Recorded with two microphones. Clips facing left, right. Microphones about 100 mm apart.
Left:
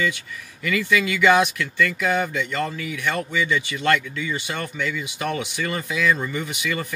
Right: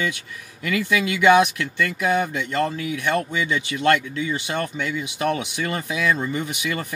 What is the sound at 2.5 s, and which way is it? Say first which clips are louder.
Speech: right 3 dB; 35° right (ahead or behind).